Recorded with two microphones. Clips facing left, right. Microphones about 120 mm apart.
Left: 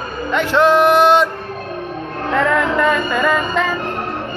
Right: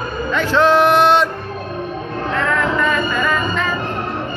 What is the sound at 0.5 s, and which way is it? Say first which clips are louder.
Speech: left 1 dB; 10° left (ahead or behind).